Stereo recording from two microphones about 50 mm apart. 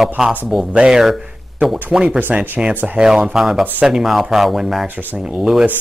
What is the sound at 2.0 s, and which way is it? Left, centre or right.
Speech, right.